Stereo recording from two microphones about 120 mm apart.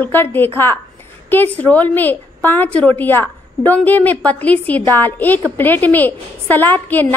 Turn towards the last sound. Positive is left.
turn(degrees=15)  # may be behind; listen again after turning